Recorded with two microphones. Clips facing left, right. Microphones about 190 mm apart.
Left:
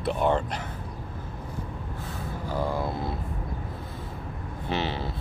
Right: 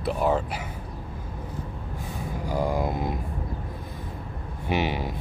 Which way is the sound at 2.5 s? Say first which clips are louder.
Right 3 dB; 15° right (ahead or behind).